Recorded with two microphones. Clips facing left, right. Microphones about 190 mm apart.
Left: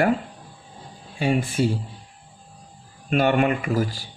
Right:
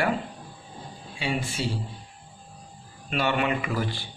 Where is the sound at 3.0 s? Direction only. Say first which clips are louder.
Left 6 dB; 50° left (ahead or behind).